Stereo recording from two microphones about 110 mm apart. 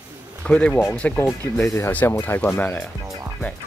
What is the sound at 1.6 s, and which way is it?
Speech, 25° left (ahead or behind).